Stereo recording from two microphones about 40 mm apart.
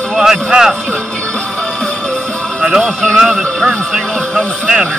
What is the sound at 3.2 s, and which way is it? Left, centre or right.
Speech, centre.